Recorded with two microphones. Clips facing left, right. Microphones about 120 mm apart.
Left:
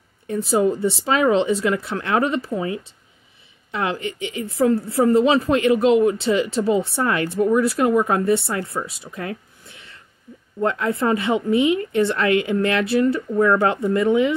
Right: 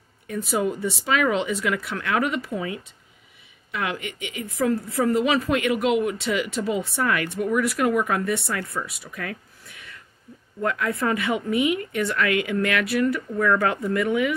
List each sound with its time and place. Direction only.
0.3 s a woman's voice: 30° left (ahead or behind)